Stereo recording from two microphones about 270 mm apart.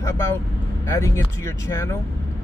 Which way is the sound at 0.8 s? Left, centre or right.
Centre.